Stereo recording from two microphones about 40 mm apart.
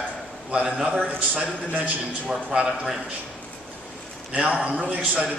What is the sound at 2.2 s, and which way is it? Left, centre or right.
Speech, centre.